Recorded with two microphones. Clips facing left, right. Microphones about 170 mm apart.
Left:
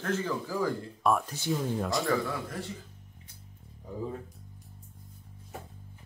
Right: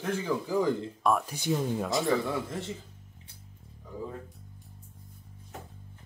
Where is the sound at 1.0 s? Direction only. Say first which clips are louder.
Even; centre (ahead or behind).